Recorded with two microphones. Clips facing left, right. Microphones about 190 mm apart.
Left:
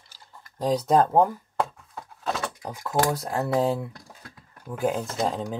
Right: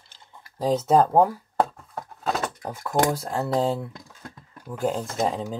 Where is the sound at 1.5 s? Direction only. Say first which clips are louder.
Right 4 dB; 45° right (ahead or behind).